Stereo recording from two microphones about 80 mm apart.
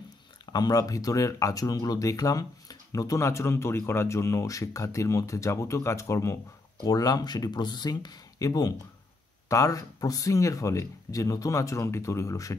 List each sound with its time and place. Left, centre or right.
0.5 s speech: left
6.8 s speech: left
8.5 s speech: left